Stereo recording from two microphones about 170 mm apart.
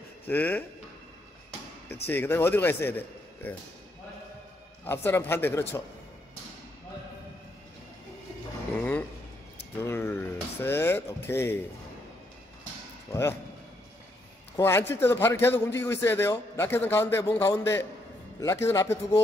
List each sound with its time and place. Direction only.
0.3 s a man's voice: 10° left (ahead or behind)
2.0 s a man's voice: 10° left (ahead or behind)
4.8 s a man's voice: 15° left (ahead or behind)
9.8 s a man's voice: 15° left (ahead or behind)
13.1 s a man's voice: 15° left (ahead or behind)
14.6 s a man's voice: 15° left (ahead or behind)